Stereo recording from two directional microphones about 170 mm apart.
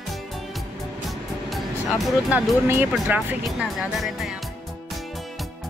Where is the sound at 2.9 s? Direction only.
10° right (ahead or behind).